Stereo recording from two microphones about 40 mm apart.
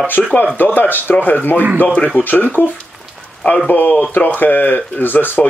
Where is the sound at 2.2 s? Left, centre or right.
Left.